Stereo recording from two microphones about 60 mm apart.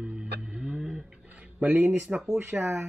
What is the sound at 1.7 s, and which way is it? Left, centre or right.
Speech, right.